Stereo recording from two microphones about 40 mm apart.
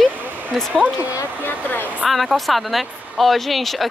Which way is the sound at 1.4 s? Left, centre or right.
Left.